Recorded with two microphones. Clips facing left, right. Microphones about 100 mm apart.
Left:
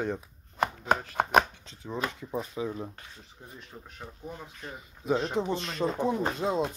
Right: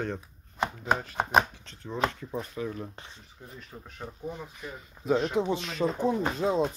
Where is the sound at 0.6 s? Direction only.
55° left (ahead or behind).